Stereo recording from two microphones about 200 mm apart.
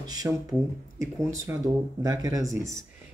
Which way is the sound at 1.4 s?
15° right (ahead or behind).